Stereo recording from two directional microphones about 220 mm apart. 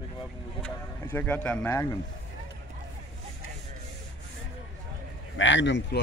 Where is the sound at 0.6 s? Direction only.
5° left (ahead or behind).